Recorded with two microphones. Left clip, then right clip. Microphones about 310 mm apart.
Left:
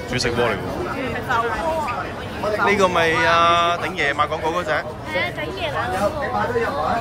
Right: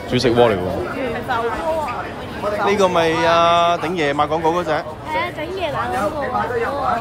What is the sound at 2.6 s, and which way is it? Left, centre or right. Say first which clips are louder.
Speech: right 1 dB; centre.